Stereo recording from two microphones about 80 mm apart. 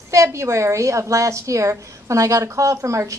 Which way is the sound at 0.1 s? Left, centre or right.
Right.